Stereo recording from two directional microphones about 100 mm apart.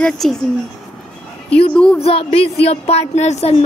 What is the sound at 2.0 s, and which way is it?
A woman's voice, 80° left.